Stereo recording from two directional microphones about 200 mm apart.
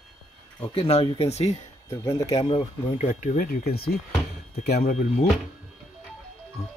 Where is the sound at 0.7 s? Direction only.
30° left (ahead or behind).